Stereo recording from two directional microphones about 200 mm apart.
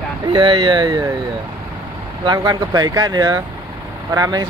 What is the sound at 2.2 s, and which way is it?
Speech, 20° right (ahead or behind).